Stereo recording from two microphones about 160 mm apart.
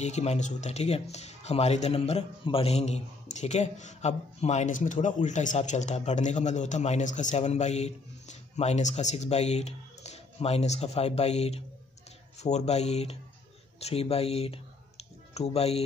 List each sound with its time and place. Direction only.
0.0 s speech: 45° left (ahead or behind)